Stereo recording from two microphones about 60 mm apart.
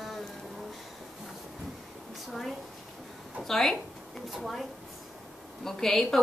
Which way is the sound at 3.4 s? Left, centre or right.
Centre.